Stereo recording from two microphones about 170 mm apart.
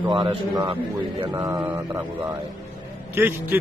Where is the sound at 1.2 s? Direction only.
20° right (ahead or behind).